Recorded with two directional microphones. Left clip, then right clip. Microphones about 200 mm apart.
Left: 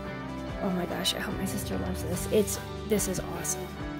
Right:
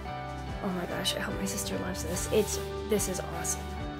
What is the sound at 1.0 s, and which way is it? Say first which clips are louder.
Speech: left 1 dB; 40° left (ahead or behind).